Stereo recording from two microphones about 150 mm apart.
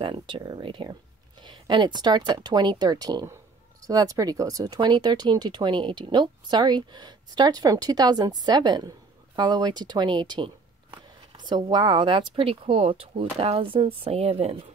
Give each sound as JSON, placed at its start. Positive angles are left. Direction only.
{"t": 0.0, "sound": "speech", "side_deg": -35}